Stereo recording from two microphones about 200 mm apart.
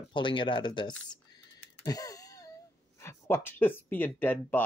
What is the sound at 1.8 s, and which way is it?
Wail, 15° left (ahead or behind).